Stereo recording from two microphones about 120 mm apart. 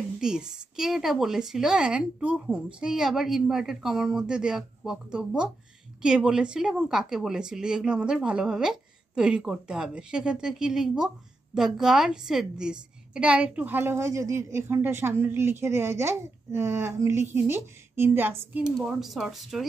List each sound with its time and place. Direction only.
0.2 s a woman's voice: 5° right (ahead or behind)
18.9 s speech: centre (ahead or behind)